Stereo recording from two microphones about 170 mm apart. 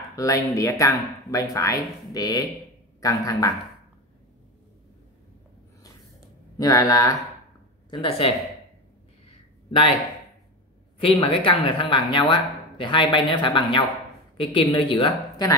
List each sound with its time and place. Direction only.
0.1 s speech: 20° left (ahead or behind)
6.6 s speech: 20° left (ahead or behind)
9.7 s speech: 30° left (ahead or behind)
11.0 s a woman's voice: 30° left (ahead or behind)